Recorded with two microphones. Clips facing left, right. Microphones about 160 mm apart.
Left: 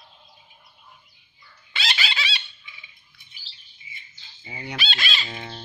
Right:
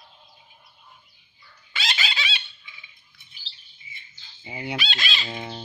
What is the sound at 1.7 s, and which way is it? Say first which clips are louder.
Chicken: left 1 dB; 35° left (ahead or behind).